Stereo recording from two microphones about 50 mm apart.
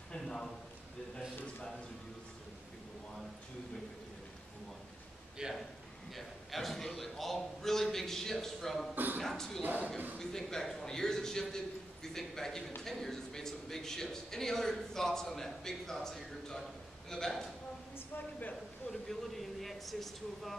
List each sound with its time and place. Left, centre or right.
5.4 s a man's voice: centre
6.1 s a man's voice: centre
8.9 s a man's voice: right
9.2 s a man's voice: centre
9.6 s a man's voice: right
10.1 s a man's voice: centre
17.9 s a woman's voice: left
18.9 s a sound: centre